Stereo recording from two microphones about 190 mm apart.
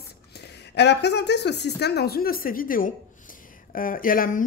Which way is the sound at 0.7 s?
60° left (ahead or behind).